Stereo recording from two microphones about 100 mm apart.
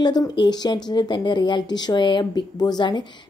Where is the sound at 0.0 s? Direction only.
45° left (ahead or behind).